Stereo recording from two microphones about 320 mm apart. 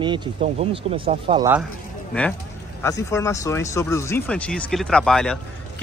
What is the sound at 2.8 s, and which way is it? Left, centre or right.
Speech, centre.